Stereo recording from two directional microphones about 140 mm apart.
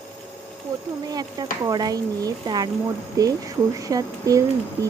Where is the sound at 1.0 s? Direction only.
30° right (ahead or behind).